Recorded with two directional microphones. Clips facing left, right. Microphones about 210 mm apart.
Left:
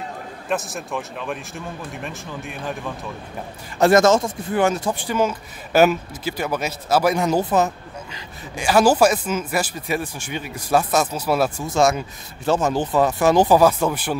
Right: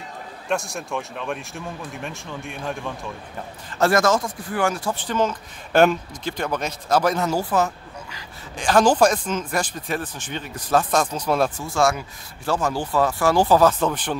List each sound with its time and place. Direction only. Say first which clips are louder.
0.5 s speech: even; centre (ahead or behind)
3.7 s speech: left 4 dB; 20° left (ahead or behind)
8.5 s speech: left 1 dB; 10° left (ahead or behind)
11.6 s speech: left 3 dB; 20° left (ahead or behind)